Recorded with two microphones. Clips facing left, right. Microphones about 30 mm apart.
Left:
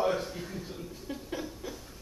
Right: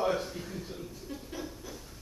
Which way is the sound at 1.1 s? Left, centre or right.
Centre.